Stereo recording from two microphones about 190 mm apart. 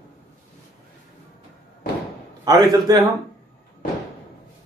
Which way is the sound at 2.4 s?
20° right (ahead or behind).